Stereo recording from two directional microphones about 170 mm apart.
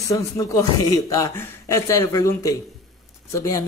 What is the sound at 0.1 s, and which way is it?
A man's voice, 20° left (ahead or behind).